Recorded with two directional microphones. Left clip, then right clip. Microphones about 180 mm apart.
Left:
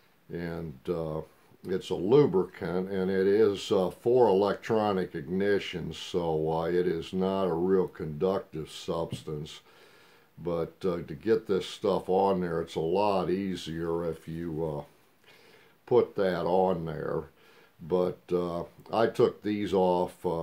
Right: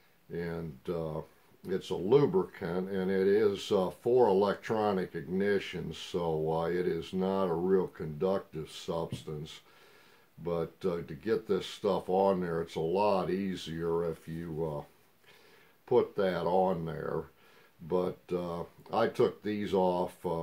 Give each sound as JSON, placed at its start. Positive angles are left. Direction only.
{"t": 0.3, "sound": "speech", "side_deg": 40}
{"t": 15.8, "sound": "speech", "side_deg": 40}